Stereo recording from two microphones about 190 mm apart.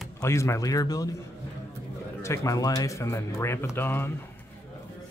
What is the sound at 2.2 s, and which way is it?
Speech, 15° left (ahead or behind).